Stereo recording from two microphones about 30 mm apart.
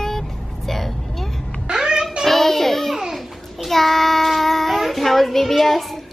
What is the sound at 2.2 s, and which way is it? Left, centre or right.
Child singing, centre.